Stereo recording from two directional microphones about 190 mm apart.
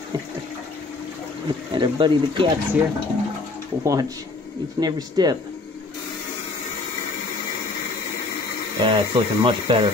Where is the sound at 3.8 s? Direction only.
15° right (ahead or behind).